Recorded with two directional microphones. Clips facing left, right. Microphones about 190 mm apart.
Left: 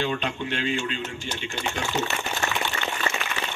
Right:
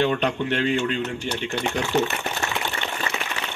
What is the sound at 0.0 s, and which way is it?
A man's voice, 65° right (ahead or behind).